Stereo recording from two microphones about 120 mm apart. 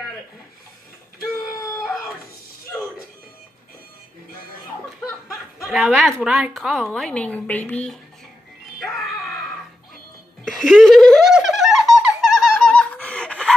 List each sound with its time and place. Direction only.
1.5 s a sound: 25° left (ahead or behind)
5.3 s a woman's voice: 5° right (ahead or behind)
10.4 s giggle: 5° left (ahead or behind)